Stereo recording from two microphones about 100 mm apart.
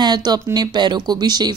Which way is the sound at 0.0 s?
45° right (ahead or behind).